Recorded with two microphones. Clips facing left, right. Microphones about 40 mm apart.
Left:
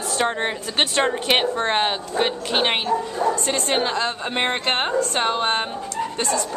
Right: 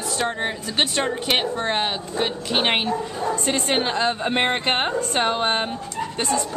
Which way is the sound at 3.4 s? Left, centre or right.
Centre.